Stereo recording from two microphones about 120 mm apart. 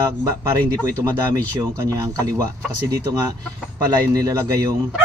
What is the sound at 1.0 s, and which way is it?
Speech, 30° right (ahead or behind).